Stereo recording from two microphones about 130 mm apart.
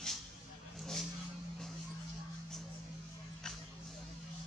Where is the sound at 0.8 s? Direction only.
5° left (ahead or behind).